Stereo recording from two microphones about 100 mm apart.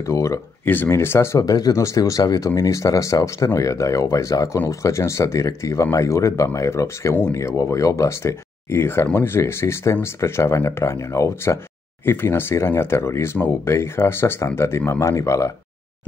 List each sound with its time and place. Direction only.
0.0 s speech: 35° left (ahead or behind)
1.5 s speech: 35° left (ahead or behind)